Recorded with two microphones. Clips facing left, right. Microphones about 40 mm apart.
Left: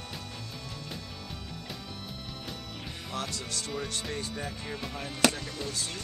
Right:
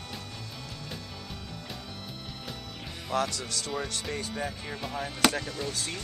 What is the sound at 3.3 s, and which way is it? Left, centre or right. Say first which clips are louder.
Speech: right 2 dB; left.